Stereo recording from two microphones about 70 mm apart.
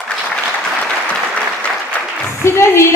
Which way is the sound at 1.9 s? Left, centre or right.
Centre.